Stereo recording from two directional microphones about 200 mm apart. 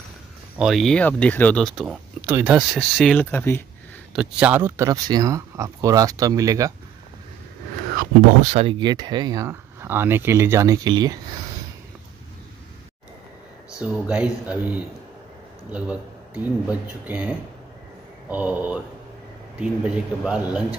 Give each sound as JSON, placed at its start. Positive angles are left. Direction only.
{"t": 0.6, "sound": "speech", "side_deg": 0}
{"t": 4.1, "sound": "speech", "side_deg": -5}
{"t": 8.4, "sound": "speech", "side_deg": -35}
{"t": 13.7, "sound": "speech", "side_deg": -5}